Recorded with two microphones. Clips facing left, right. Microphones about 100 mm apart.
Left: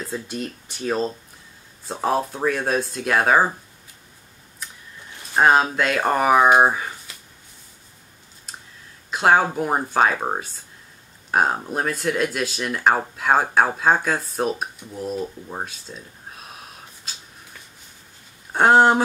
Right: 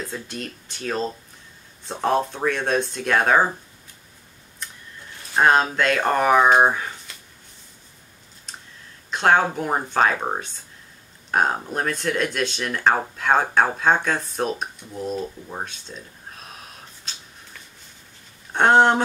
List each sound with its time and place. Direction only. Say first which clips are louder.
0.0 s speech: left 3 dB; 5° left (ahead or behind)
4.6 s printer: even; 5° left (ahead or behind)
5.3 s speech: left 1 dB; 5° left (ahead or behind)
8.5 s a sound: left 1 dB; 5° left (ahead or behind)
9.1 s speech: left 1 dB; 5° left (ahead or behind)